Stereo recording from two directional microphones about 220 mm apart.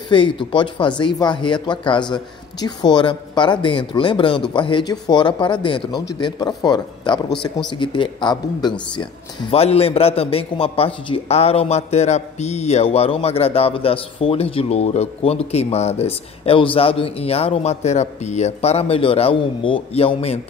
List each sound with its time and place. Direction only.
0.1 s a man's voice: 20° left (ahead or behind)